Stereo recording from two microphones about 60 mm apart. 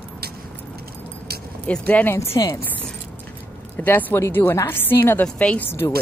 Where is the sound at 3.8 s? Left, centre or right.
Left.